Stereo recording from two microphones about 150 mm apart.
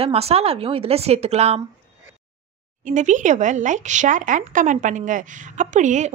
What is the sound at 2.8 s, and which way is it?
Speech, 55° right (ahead or behind).